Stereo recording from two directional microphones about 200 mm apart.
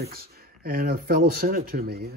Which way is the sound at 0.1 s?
50° right (ahead or behind).